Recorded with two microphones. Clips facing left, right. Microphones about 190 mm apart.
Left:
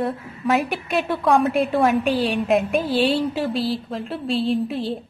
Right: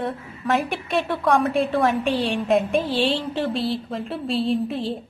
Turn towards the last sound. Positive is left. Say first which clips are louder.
# left 1 dB
turn(degrees=0)  # may be behind; listen again after turning